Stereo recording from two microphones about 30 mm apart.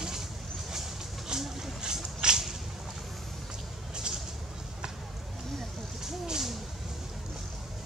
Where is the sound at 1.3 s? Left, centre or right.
Right.